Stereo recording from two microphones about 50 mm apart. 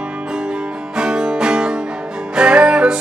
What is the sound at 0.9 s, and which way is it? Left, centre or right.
Music, centre.